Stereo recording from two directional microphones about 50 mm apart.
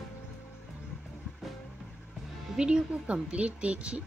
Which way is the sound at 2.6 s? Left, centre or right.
Centre.